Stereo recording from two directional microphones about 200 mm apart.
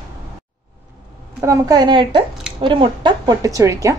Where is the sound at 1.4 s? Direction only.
15° right (ahead or behind).